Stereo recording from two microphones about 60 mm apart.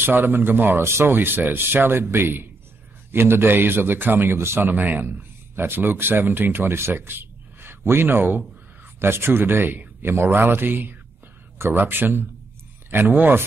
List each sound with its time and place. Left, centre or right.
0.0 s a man's voice: right